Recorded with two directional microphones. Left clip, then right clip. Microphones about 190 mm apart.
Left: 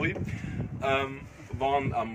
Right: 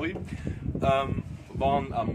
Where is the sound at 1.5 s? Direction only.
25° right (ahead or behind).